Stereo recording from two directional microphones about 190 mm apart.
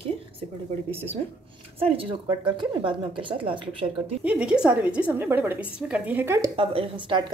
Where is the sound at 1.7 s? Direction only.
30° right (ahead or behind).